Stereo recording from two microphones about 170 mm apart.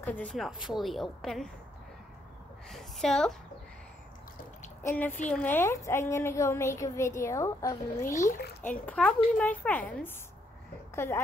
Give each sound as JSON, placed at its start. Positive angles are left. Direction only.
{"t": 0.0, "sound": "a woman's voice", "side_deg": 10}
{"t": 2.7, "sound": "a woman's voice", "side_deg": 5}
{"t": 4.8, "sound": "a woman's voice", "side_deg": 10}
{"t": 8.3, "sound": "speech", "side_deg": 65}
{"t": 8.6, "sound": "a woman's voice", "side_deg": 10}